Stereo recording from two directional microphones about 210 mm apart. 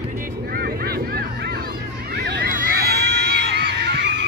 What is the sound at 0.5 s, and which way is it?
Honk, 45° right (ahead or behind).